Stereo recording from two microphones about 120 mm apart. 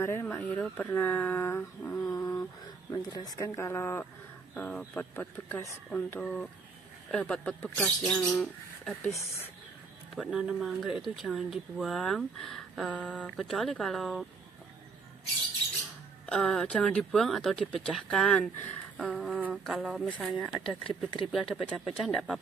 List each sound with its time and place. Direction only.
0.0 s speech: 20° left (ahead or behind)
4.6 s speech: 10° left (ahead or behind)
5.1 s speech: 20° left (ahead or behind); by 8.9 s centre (ahead or behind)
10.1 s speech: 5° right (ahead or behind)
16.3 s speech: 5° left (ahead or behind)